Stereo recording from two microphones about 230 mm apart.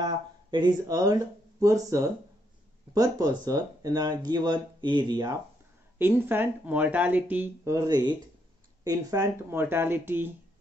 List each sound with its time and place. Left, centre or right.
0.0 s speech: centre